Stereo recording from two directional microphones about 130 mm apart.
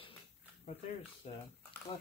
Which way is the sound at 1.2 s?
50° left (ahead or behind).